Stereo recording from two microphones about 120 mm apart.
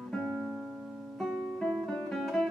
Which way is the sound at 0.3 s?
5° right (ahead or behind).